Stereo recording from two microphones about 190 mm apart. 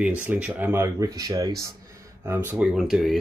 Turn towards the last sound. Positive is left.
turn(degrees=0)  # may be behind; listen again after turning